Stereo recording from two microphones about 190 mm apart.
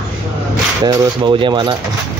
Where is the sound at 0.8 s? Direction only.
25° right (ahead or behind).